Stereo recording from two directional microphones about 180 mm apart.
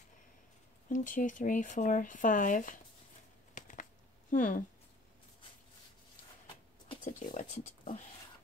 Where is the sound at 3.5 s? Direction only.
45° left (ahead or behind).